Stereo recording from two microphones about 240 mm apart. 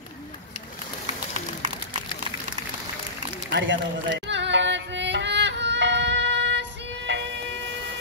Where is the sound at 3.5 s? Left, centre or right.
Right.